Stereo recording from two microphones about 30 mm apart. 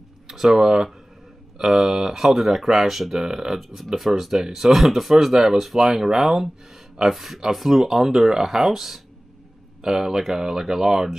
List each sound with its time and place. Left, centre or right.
0.6 s speech: right